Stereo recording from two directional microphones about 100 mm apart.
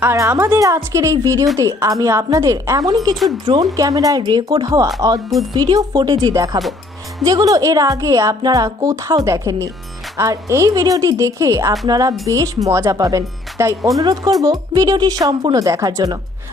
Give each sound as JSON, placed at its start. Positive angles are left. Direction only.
{"t": 0.0, "sound": "a woman's voice", "side_deg": -25}